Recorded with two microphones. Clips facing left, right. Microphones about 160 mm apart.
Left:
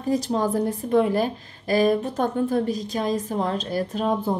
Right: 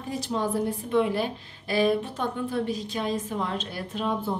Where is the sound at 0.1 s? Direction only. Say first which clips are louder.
Left 5 dB; 40° left (ahead or behind).